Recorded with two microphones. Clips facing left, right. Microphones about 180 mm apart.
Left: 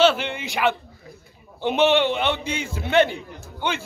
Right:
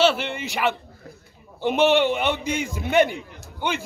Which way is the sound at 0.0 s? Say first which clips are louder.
Left 2 dB; 5° right (ahead or behind).